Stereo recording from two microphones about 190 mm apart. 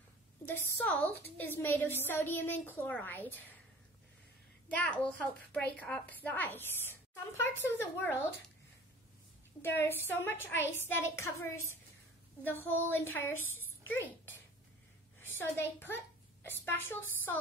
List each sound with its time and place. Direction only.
0.8 s a woman's voice: 10° left (ahead or behind)
4.7 s a woman's voice: 5° left (ahead or behind)
9.6 s a woman's voice: 10° left (ahead or behind)